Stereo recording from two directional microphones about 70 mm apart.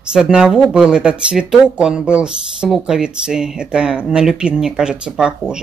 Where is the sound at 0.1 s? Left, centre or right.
Centre.